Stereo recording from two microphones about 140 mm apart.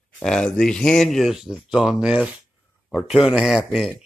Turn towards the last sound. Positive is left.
turn(degrees=-5)  # may be behind; listen again after turning